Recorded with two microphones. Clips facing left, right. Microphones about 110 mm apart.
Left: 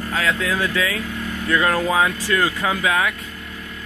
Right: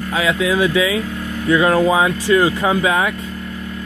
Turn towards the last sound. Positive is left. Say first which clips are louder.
# right 4 dB
turn(degrees=-25)  # may be behind; listen again after turning